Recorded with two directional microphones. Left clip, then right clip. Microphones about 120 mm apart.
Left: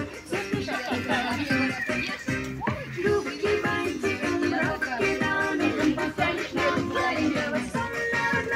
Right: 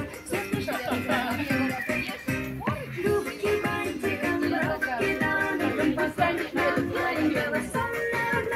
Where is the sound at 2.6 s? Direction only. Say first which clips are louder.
Left 2 dB; 15° right (ahead or behind).